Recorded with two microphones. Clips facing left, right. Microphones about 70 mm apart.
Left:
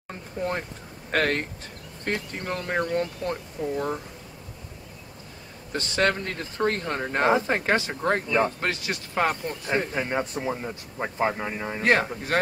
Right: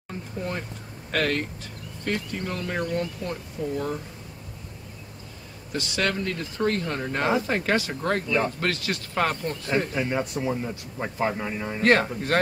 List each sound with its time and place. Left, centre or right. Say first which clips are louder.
0.1 s speech: left 2 dB; left
5.7 s speech: left 3 dB; left; by 12.4 s centre